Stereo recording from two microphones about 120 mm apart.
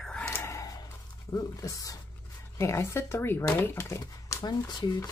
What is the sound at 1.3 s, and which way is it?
Speech, 30° left (ahead or behind).